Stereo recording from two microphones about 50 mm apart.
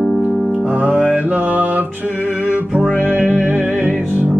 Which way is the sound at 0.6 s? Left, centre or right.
Right.